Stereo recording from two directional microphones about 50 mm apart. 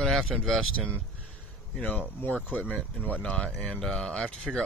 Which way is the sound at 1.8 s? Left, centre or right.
Left.